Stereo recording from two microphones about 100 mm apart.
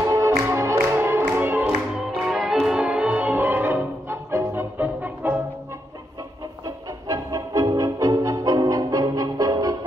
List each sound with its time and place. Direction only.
0.1 s music: 30° right (ahead or behind)
2.2 s music: centre (ahead or behind); by 5.4 s 20° right (ahead or behind)
6.6 s music: 40° right (ahead or behind)